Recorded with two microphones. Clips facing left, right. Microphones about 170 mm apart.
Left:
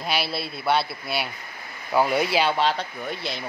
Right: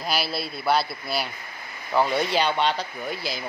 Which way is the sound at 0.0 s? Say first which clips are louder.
Even; centre (ahead or behind).